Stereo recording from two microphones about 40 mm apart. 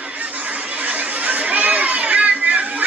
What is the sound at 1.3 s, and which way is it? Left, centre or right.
Children playing, right.